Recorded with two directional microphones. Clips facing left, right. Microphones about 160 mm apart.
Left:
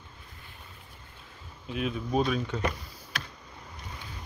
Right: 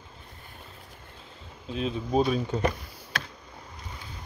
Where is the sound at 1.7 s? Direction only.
30° right (ahead or behind).